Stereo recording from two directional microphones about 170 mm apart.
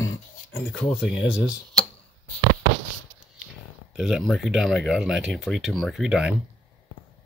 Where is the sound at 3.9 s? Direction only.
Centre (ahead or behind).